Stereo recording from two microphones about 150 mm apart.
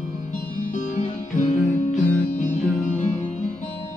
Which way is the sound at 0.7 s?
60° left (ahead or behind).